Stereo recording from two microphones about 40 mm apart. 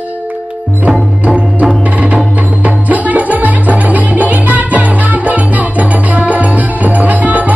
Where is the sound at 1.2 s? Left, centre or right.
Right.